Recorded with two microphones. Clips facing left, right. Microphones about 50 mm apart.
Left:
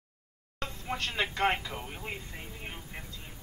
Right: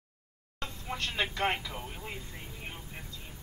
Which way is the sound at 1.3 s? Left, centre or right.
Left.